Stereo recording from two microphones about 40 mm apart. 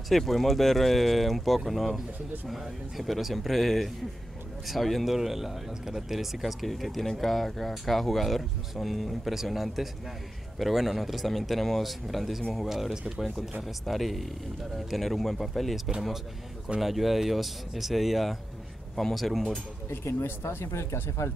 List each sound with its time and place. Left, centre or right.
0.1 s speech: centre
16.8 s speech: centre
19.9 s speech: left